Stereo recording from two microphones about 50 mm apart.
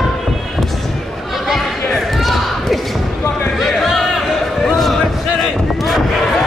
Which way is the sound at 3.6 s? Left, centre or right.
Centre.